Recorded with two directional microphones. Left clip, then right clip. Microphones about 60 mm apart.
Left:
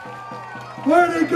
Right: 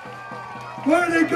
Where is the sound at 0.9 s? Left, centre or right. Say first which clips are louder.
Left 3 dB; right.